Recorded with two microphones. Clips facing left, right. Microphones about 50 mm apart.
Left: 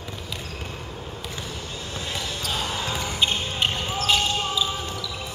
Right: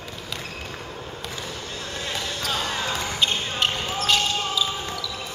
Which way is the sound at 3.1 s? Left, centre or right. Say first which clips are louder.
Even; centre.